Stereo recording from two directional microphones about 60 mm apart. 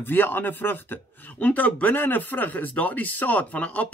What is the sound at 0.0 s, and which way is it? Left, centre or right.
Speech, left.